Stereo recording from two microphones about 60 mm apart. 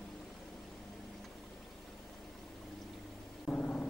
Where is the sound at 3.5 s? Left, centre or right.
Left.